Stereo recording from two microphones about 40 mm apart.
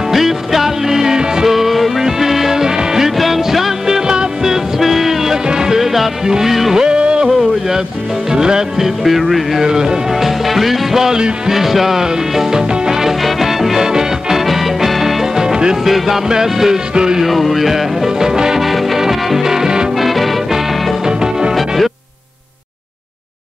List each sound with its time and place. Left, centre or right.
0.1 s music: centre
1.5 s music: centre
3.2 s music: centre
6.8 s music: right
8.3 s speech: centre
9.6 s speech: centre
10.4 s speech: centre
13.2 s music: centre
15.4 s music: centre
16.3 s speech: centre
16.9 s music: centre
17.2 s speech: centre
18.7 s music: centre
20.0 s music: centre